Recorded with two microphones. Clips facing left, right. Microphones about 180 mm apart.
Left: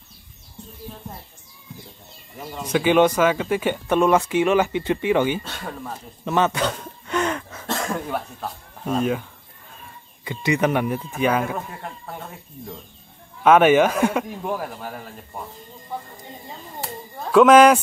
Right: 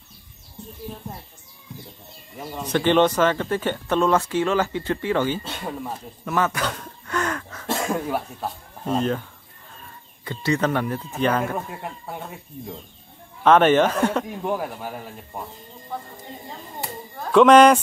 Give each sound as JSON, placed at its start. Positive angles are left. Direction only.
{"t": 2.6, "sound": "speech", "side_deg": 10}
{"t": 5.6, "sound": "speech", "side_deg": -10}
{"t": 6.2, "sound": "speech", "side_deg": 25}
{"t": 7.6, "sound": "speech", "side_deg": -10}
{"t": 10.2, "sound": "speech", "side_deg": 15}
{"t": 13.4, "sound": "speech", "side_deg": 10}
{"t": 14.3, "sound": "speech", "side_deg": 0}
{"t": 17.3, "sound": "speech", "side_deg": 5}